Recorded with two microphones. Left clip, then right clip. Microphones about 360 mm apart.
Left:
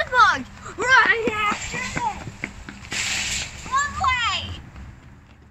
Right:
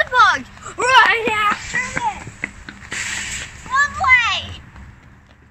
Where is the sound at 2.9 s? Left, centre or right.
Left.